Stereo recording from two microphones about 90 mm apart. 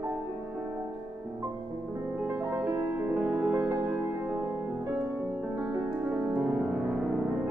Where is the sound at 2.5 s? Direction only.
25° right (ahead or behind).